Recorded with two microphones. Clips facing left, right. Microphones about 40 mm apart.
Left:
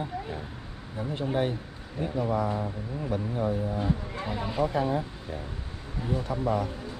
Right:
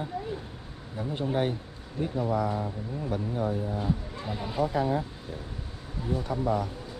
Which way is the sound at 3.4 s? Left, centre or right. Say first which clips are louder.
Left 2 dB; left.